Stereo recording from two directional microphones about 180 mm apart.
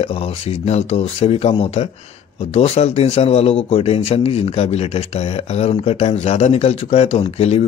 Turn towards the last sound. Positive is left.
turn(degrees=35)  # may be behind; listen again after turning